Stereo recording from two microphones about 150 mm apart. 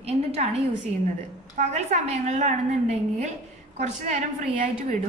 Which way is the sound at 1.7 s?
50° right (ahead or behind).